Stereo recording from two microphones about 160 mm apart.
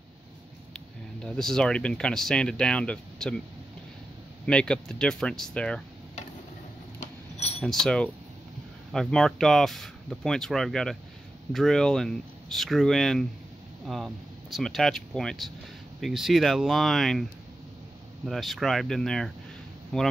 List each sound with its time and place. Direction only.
0.7 s speech: 5° left (ahead or behind)
4.5 s speech: 5° left (ahead or behind)
7.0 s a sound: 40° left (ahead or behind)
7.6 s speech: 5° left (ahead or behind)